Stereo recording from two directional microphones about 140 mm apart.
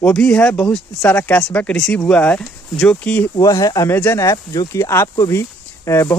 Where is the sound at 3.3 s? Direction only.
25° left (ahead or behind).